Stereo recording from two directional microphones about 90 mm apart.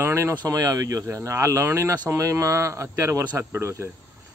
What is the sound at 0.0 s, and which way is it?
Speech, 30° right (ahead or behind).